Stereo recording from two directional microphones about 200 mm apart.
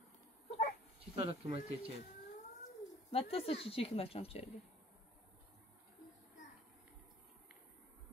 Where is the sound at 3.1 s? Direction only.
30° left (ahead or behind).